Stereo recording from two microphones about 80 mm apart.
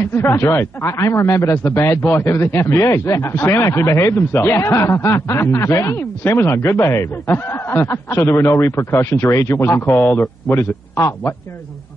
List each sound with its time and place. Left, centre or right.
0.0 s speech: left